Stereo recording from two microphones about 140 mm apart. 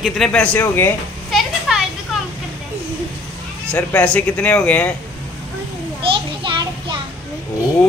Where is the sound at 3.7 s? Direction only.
10° left (ahead or behind).